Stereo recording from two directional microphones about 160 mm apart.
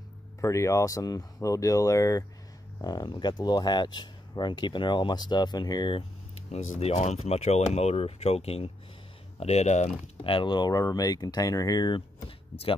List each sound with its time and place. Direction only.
0.4 s speech: 20° left (ahead or behind)
6.5 s speech: 45° left (ahead or behind)
10.2 s speech: 30° left (ahead or behind)